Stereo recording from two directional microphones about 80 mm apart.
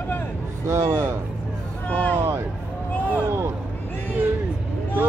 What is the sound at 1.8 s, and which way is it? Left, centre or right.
Speech, left.